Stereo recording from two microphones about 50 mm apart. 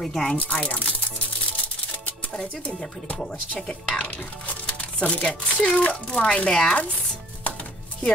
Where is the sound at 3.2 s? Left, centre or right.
Centre.